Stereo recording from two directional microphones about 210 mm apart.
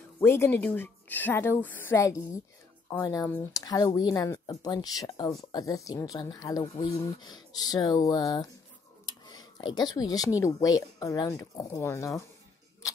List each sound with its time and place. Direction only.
0.2 s speech: 10° left (ahead or behind)
9.0 s dishes: 20° left (ahead or behind)
9.8 s speech: 20° left (ahead or behind)